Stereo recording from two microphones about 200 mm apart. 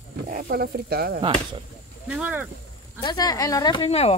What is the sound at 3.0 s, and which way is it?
Speech, 20° left (ahead or behind).